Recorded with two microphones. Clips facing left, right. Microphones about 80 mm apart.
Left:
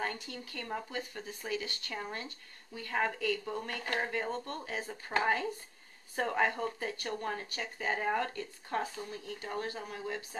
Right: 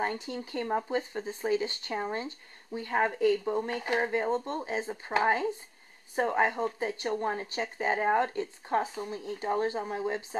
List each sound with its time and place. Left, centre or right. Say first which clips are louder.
0.0 s speech: right 6 dB; right